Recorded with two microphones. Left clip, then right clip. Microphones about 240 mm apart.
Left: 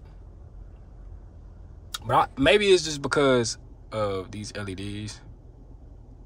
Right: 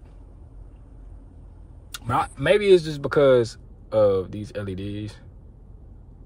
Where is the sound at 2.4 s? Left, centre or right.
Centre.